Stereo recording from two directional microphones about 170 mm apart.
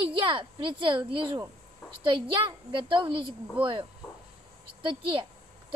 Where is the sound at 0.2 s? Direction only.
30° right (ahead or behind).